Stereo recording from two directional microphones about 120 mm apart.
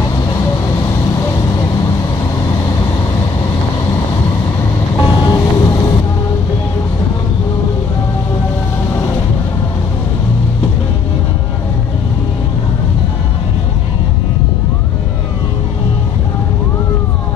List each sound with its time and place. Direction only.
5.0 s vehicle: 35° left (ahead or behind)